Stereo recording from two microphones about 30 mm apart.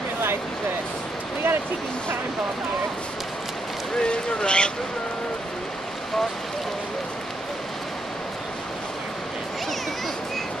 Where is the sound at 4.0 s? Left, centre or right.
Left.